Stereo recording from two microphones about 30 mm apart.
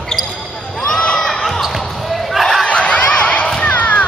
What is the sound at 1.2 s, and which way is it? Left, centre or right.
Basketball bounce, centre.